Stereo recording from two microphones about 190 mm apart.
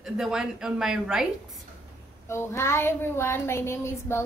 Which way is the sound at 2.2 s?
15° left (ahead or behind).